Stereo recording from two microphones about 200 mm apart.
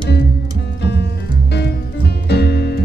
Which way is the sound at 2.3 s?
55° left (ahead or behind).